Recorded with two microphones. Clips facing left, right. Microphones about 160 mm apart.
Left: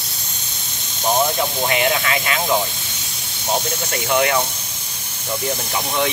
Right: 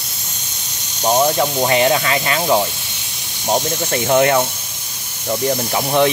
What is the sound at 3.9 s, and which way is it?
Speech, 45° right (ahead or behind).